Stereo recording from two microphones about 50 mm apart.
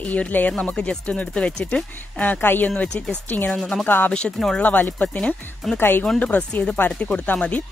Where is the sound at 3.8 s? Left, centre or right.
Left.